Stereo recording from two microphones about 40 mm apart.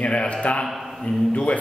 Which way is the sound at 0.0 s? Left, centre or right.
Left.